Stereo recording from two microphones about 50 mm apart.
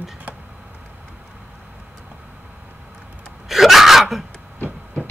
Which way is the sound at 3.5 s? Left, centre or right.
Centre.